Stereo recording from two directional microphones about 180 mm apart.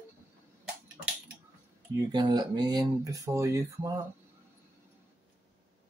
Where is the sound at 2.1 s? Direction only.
25° right (ahead or behind).